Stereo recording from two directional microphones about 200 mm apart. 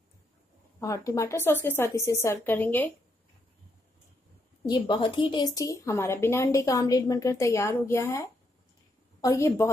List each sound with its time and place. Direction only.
0.7 s a woman's voice: 15° left (ahead or behind)
4.8 s a woman's voice: 25° left (ahead or behind)